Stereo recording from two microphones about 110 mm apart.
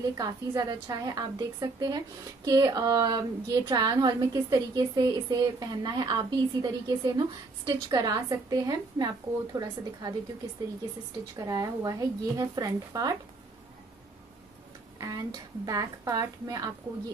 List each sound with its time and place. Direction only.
0.0 s a woman's voice: 35° right (ahead or behind)
11.3 s a woman's voice: 30° right (ahead or behind)
15.0 s a woman's voice: 35° right (ahead or behind)